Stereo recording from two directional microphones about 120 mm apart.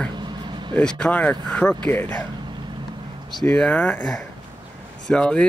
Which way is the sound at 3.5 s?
10° left (ahead or behind).